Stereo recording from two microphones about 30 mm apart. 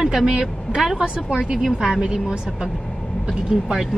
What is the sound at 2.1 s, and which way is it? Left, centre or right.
Speech, right.